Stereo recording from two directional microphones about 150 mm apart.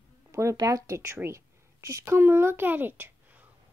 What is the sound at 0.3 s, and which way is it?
A child's voice, 20° right (ahead or behind).